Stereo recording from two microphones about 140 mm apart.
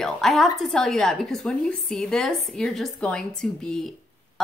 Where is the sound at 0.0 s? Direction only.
Centre (ahead or behind).